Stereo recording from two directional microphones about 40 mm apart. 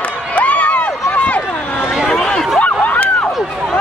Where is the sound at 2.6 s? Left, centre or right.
Left.